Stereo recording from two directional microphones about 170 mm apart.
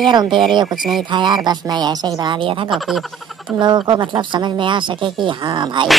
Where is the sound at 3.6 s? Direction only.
25° right (ahead or behind).